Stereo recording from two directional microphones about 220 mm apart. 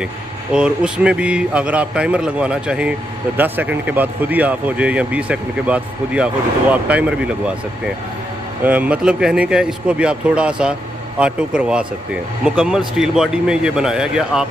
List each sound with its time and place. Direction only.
0.0 s speech: 5° right (ahead or behind)
8.6 s speech: 5° right (ahead or behind)